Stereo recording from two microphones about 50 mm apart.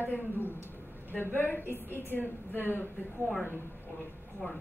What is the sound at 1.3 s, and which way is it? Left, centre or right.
A woman's voice, left.